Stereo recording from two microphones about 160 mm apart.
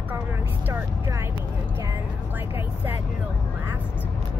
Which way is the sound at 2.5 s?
15° right (ahead or behind).